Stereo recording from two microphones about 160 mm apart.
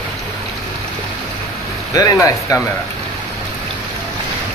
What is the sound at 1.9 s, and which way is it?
Speech, 20° left (ahead or behind).